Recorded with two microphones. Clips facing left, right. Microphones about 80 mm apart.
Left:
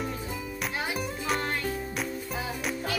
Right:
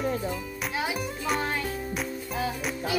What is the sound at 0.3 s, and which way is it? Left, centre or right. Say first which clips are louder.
Music: right 1 dB; centre.